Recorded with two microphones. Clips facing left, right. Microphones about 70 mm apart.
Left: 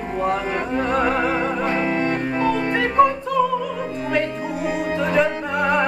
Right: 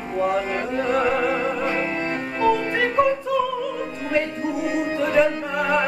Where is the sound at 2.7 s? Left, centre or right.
Centre.